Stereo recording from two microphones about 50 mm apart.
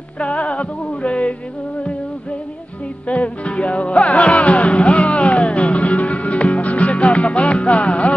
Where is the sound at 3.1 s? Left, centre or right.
Left.